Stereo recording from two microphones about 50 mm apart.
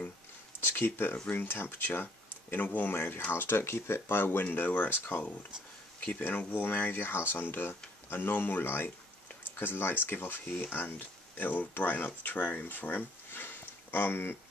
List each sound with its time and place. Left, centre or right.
0.7 s speech: left
5.9 s a sound: left
6.2 s speech: left